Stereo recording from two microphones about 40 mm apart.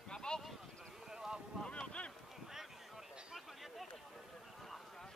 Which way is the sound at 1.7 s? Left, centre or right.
Left.